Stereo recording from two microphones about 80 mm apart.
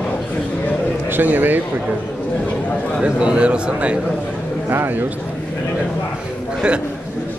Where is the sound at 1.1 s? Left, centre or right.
Right.